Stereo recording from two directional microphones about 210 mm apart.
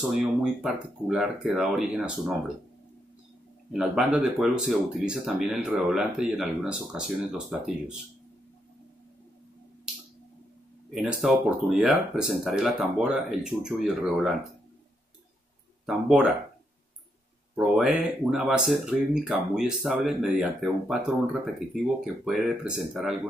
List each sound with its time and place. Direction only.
0.1 s speech: 5° right (ahead or behind)
3.7 s speech: 5° right (ahead or behind)
11.0 s speech: 5° right (ahead or behind)
15.8 s speech: centre (ahead or behind)
17.6 s speech: 5° right (ahead or behind)